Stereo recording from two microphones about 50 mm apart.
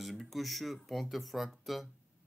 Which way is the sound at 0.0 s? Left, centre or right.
Centre.